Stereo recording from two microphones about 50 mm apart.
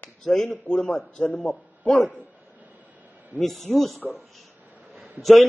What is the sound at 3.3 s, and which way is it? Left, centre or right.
Speech, centre.